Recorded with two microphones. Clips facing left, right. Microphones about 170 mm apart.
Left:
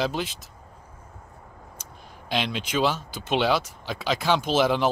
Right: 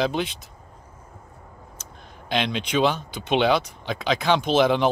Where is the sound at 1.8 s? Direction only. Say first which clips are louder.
Right 1 dB; 10° left (ahead or behind).